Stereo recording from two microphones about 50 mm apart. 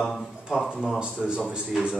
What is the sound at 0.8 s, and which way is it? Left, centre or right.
Speech, centre.